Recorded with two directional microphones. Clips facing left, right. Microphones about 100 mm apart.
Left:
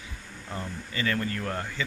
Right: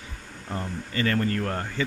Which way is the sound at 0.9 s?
40° right (ahead or behind).